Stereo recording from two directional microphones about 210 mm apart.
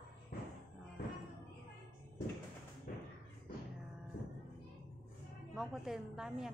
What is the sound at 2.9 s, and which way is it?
Thump, 45° left (ahead or behind).